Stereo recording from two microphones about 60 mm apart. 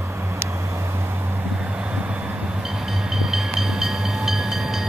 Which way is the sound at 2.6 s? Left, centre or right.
Centre.